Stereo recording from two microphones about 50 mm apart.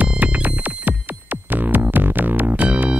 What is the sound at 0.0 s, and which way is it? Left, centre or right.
Music, right.